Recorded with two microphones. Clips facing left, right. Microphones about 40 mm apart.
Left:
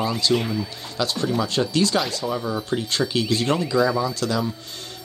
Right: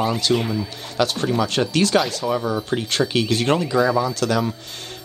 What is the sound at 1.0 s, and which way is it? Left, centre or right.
Speech, right.